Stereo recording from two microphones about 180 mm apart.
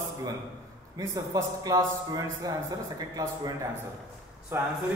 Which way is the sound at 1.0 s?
20° right (ahead or behind).